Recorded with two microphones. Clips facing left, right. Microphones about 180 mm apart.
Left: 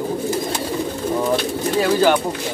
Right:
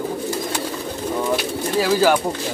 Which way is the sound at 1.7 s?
5° right (ahead or behind).